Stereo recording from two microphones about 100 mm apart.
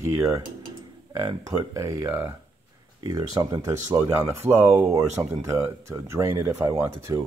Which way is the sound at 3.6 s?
30° right (ahead or behind).